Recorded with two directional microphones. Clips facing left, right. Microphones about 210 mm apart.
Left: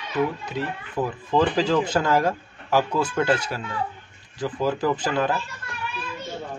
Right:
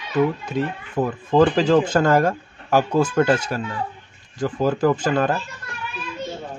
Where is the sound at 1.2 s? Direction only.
50° right (ahead or behind).